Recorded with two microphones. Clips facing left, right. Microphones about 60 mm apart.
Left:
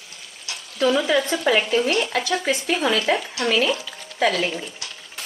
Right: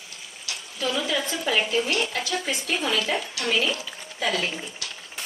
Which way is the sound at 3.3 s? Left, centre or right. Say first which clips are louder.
Left 2 dB; left.